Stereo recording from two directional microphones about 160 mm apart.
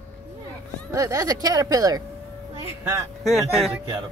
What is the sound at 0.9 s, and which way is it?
Speech, 20° right (ahead or behind).